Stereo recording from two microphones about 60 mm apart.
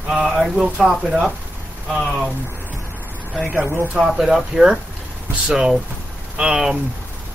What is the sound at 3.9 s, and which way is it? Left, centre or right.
Speech, centre.